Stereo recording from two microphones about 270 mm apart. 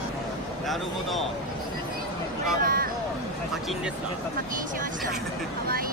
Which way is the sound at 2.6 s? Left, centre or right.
Right.